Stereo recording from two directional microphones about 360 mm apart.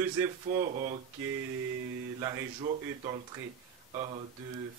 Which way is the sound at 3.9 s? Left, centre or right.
Centre.